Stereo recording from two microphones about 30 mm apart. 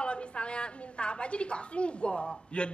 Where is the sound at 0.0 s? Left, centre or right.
Left.